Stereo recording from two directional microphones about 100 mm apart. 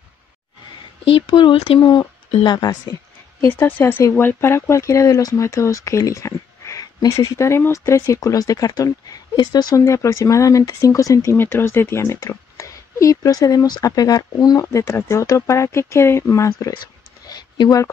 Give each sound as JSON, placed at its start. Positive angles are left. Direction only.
{"t": 1.1, "sound": "speech", "side_deg": 60}
{"t": 2.4, "sound": "speech", "side_deg": 40}
{"t": 3.3, "sound": "speech", "side_deg": 25}
{"t": 11.3, "sound": "speech", "side_deg": 20}
{"t": 17.3, "sound": "a sound", "side_deg": 45}